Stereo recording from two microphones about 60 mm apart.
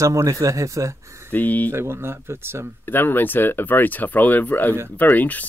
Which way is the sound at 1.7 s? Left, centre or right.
Right.